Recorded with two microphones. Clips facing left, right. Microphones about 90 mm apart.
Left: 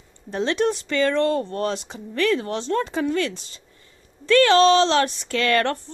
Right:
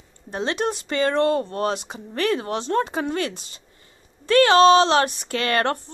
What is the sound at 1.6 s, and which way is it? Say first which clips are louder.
Speech: right 1 dB; 55° right (ahead or behind).